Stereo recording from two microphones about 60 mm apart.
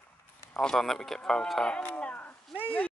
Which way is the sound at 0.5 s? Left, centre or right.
Centre.